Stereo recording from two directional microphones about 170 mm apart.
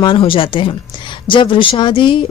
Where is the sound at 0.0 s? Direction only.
30° left (ahead or behind).